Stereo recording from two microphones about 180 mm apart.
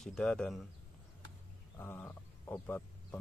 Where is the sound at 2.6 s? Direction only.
10° left (ahead or behind).